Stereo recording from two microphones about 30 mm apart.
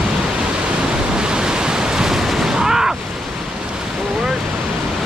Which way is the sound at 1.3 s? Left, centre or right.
Right.